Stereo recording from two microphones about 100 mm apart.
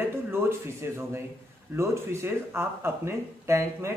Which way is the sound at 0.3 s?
25° right (ahead or behind).